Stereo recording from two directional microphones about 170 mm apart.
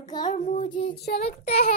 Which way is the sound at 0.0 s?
25° left (ahead or behind).